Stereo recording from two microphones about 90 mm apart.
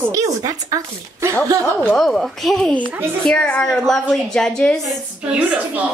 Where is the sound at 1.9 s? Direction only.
5° left (ahead or behind).